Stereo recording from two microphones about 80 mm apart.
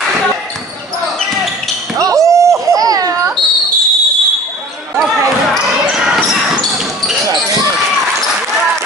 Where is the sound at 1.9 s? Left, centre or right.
Right.